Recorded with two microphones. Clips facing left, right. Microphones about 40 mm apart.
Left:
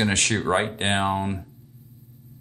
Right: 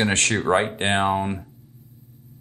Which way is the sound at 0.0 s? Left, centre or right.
Right.